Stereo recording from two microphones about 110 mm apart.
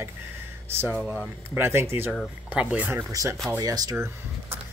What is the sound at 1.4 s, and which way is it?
Speech, 20° right (ahead or behind).